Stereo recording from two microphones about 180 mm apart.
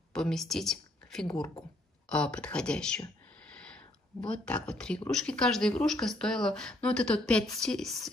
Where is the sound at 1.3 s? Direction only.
20° left (ahead or behind).